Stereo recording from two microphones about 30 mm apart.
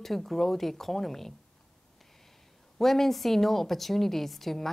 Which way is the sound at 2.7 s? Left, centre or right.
Centre.